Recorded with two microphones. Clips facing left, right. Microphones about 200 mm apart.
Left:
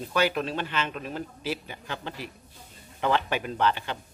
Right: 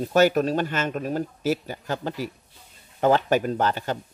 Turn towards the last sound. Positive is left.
turn(degrees=-40)  # may be behind; listen again after turning